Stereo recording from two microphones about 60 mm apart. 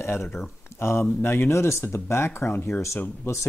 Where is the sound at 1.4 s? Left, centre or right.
Left.